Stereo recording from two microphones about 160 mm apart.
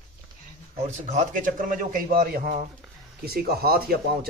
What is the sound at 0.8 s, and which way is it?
A man's voice, 50° right (ahead or behind).